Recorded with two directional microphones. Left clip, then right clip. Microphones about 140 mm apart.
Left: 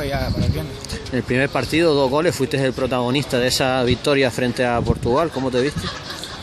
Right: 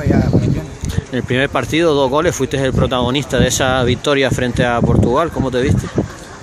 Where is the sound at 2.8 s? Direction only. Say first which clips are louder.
Right 4 dB; 20° right (ahead or behind).